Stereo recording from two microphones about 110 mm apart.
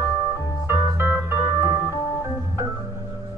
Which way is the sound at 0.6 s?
20° right (ahead or behind).